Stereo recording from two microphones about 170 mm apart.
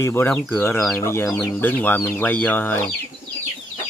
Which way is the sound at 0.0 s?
15° left (ahead or behind).